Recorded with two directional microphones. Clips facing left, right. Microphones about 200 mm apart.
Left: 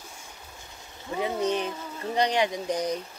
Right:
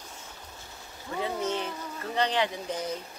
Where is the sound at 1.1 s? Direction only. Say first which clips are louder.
Left 4 dB; 15° left (ahead or behind).